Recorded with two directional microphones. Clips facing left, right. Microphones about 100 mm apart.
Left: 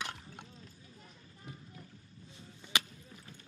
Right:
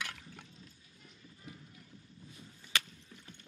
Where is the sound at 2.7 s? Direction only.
15° left (ahead or behind).